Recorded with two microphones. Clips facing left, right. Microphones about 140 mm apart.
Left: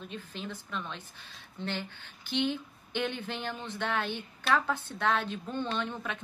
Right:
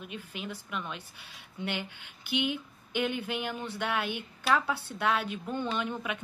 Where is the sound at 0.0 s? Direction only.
10° right (ahead or behind).